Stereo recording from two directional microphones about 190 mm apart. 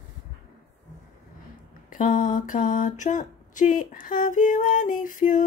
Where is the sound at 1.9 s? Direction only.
45° left (ahead or behind).